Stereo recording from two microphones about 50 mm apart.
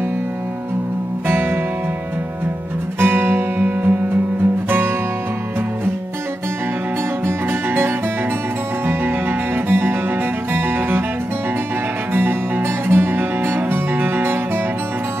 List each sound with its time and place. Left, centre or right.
1.2 s music: right
3.0 s music: right
7.2 s music: right
9.7 s music: right
12.1 s music: right